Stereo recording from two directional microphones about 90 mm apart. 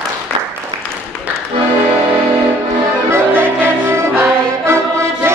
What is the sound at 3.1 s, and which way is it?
Music, 25° right (ahead or behind).